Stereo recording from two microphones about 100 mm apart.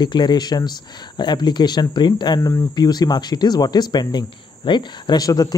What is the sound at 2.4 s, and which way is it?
Speech, 25° left (ahead or behind).